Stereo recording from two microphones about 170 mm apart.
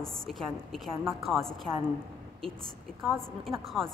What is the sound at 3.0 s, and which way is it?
Speech, centre (ahead or behind).